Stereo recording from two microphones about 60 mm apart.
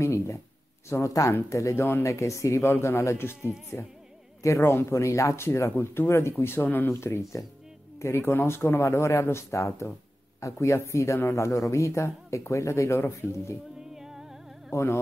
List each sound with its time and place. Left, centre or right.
0.0 s a sound: left
0.8 s speech: left
4.4 s speech: left
4.7 s speech: left
6.9 s speech: left
13.9 s music: centre
14.7 s music: left